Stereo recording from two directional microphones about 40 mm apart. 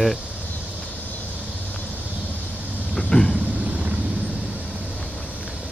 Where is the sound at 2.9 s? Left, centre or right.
Centre.